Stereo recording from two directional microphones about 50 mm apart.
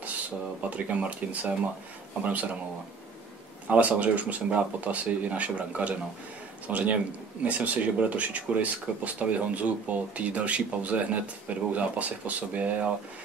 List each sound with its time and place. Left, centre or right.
0.6 s speech: right
3.6 s speech: right